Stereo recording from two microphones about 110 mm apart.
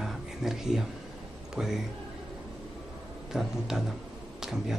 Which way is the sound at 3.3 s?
5° right (ahead or behind).